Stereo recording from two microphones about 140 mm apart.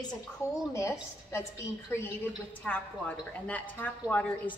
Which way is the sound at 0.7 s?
20° left (ahead or behind).